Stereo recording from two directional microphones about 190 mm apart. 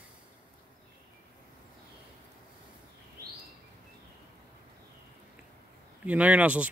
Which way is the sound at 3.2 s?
15° right (ahead or behind).